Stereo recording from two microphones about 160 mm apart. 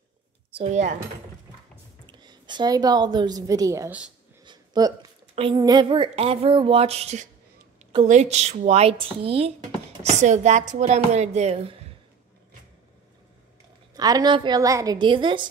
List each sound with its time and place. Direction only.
0.6 s speech: 45° right (ahead or behind)
2.0 s a woman's voice: 30° right (ahead or behind)
4.5 s a sound: 25° right (ahead or behind)
5.3 s speech: 35° right (ahead or behind)
10.0 s speech: 45° right (ahead or behind)
13.9 s a woman's voice: 25° right (ahead or behind)